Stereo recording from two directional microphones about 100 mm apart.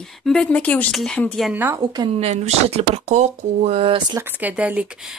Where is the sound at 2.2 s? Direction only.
90° right.